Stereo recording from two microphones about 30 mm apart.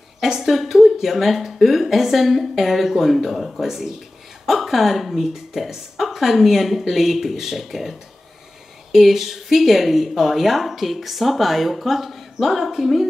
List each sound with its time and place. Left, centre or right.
0.2 s a woman's voice: centre
8.9 s a woman's voice: centre